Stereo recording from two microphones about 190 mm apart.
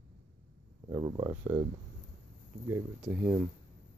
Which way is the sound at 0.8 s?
20° right (ahead or behind).